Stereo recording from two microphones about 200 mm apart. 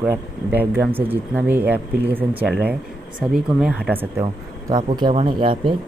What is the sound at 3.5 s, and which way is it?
Speech, 5° right (ahead or behind).